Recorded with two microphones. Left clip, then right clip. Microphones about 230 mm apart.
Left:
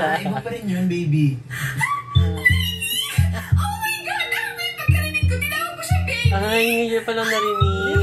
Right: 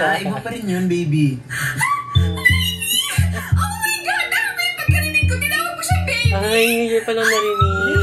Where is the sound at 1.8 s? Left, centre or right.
Centre.